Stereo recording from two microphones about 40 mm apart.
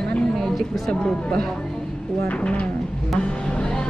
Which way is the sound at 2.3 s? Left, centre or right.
Left.